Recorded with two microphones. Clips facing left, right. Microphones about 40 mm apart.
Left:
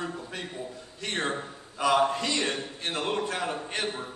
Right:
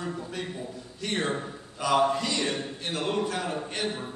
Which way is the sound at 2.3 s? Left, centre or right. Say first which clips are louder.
Even; left.